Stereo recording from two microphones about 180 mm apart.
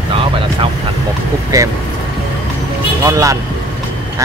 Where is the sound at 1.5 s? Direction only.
20° right (ahead or behind).